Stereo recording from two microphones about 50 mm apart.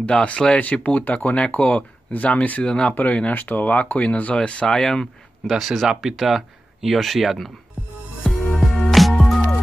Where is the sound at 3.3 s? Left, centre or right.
Left; by 5.1 s centre.